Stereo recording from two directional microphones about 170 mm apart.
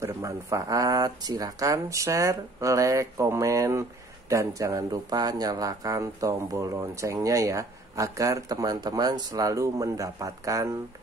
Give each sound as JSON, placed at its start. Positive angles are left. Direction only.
{"t": 0.0, "sound": "speech", "side_deg": -20}